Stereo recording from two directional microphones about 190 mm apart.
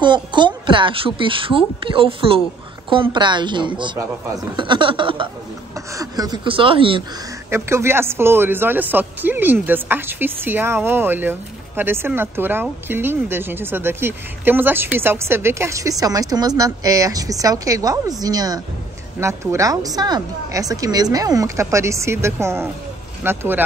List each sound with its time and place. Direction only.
0.0 s a woman's voice: 25° right (ahead or behind)
7.4 s a man's voice: 15° right (ahead or behind)